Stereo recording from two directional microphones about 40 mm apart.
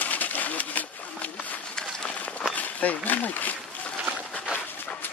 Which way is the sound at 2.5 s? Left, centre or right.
Left.